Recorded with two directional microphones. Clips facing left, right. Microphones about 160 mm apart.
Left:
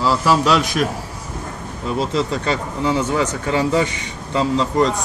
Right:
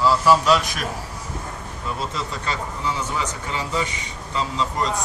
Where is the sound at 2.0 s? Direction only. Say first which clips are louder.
Left 10 dB; 75° left (ahead or behind).